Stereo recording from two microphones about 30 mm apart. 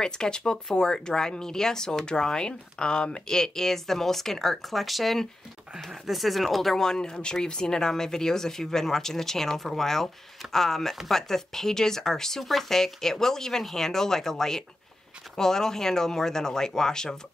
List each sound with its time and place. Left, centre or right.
0.0 s speech: left
3.3 s speech: centre
4.6 s speech: centre; by 17.2 s left